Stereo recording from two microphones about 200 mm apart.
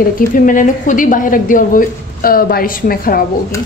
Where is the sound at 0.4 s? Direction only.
40° left (ahead or behind).